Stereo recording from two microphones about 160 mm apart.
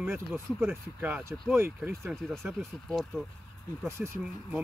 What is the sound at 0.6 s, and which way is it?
Speech, 10° right (ahead or behind).